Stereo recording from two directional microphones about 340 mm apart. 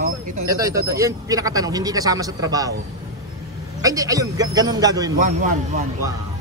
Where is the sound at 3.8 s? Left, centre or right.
Centre.